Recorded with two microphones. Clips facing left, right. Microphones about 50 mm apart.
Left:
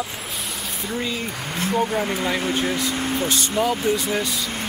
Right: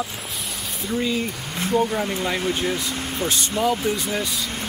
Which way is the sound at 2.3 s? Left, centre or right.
Centre.